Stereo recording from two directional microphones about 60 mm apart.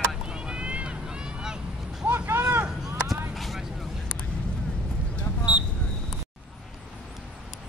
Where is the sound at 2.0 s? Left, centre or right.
Right.